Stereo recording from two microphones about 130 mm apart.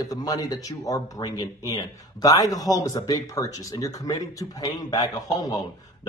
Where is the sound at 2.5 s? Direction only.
30° left (ahead or behind).